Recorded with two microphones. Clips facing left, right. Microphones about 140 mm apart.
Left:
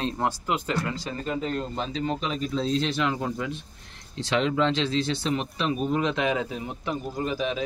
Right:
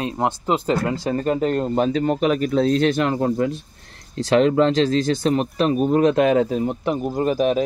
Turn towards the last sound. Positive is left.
turn(degrees=-45)  # may be behind; listen again after turning